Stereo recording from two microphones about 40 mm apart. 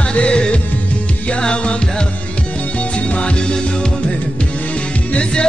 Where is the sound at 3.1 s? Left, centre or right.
Left.